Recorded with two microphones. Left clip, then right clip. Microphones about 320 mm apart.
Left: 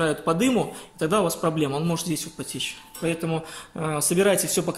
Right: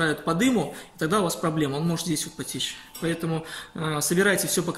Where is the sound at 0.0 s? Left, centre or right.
Centre.